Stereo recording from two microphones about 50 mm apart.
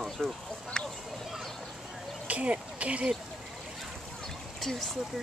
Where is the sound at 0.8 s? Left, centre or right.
Centre.